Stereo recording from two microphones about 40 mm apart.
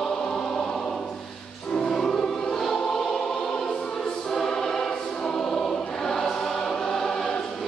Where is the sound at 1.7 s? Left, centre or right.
Centre.